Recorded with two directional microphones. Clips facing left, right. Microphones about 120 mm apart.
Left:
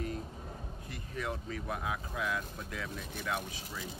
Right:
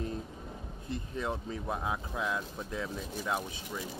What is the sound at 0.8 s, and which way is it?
Speech, 25° right (ahead or behind).